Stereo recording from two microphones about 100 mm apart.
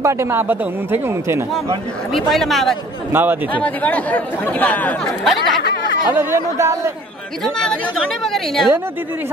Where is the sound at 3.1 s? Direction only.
20° right (ahead or behind).